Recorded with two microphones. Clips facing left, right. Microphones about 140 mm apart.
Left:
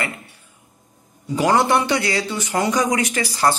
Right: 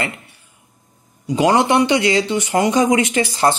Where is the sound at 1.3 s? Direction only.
20° right (ahead or behind).